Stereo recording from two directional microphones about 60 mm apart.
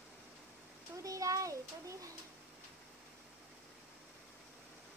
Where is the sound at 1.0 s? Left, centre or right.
Right.